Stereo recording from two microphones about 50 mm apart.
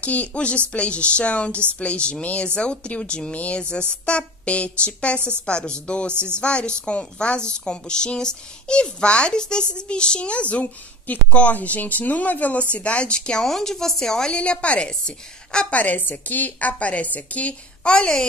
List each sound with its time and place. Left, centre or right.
0.0 s a woman's voice: left; by 14.3 s centre
14.3 s a woman's voice: left
15.7 s a woman's voice: left